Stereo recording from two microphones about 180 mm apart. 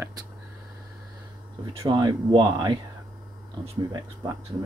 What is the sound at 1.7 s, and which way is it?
Speech, 30° right (ahead or behind).